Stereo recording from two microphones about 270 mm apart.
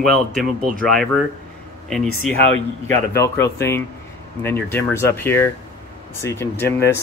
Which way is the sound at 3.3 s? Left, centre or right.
Centre.